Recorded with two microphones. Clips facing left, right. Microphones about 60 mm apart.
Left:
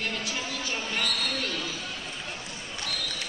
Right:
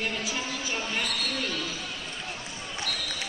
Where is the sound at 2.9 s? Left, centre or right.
Right.